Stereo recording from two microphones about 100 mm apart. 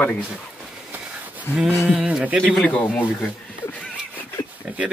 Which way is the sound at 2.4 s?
10° left (ahead or behind).